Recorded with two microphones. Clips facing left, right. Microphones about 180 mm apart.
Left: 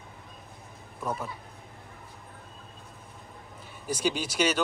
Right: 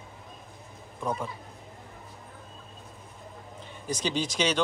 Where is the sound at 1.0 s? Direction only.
5° left (ahead or behind).